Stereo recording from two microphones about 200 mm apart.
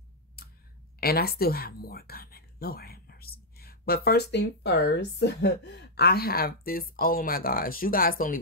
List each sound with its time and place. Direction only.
0.4 s clicking: 50° left (ahead or behind)
1.0 s a woman's voice: 50° left (ahead or behind)